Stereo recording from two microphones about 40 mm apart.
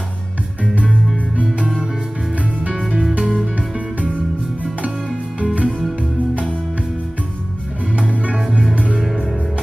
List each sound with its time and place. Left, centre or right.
2.7 s music: centre
5.4 s music: right
5.7 s music: centre
8.1 s music: right